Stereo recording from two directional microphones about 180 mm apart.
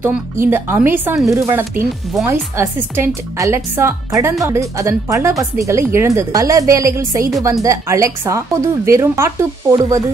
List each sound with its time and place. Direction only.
0.0 s speech: 15° right (ahead or behind)